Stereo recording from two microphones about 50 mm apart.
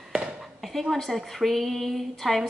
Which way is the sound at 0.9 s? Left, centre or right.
Centre.